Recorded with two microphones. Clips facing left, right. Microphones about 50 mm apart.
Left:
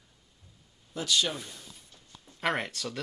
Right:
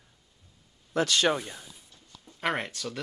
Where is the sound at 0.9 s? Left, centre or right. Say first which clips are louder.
Right 5 dB; right.